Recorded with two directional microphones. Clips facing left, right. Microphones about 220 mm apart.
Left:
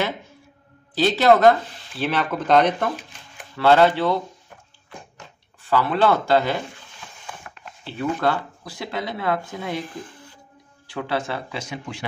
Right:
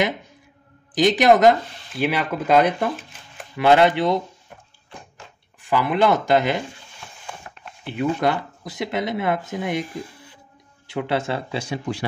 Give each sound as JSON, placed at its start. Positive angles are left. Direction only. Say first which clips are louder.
{"t": 0.9, "sound": "speech", "louder": "right 1 dB", "side_deg": -15}
{"t": 5.6, "sound": "speech", "louder": "right 1 dB", "side_deg": -15}
{"t": 7.8, "sound": "speech", "louder": "right 2 dB", "side_deg": -15}
{"t": 10.9, "sound": "speech", "louder": "right 3 dB", "side_deg": -25}